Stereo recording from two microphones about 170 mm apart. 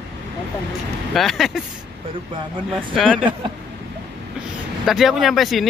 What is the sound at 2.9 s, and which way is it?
Speech, 5° left (ahead or behind).